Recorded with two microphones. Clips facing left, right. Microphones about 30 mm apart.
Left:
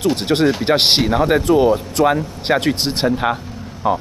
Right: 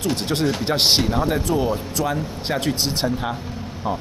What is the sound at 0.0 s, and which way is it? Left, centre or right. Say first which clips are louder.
Speech: left 6 dB; left.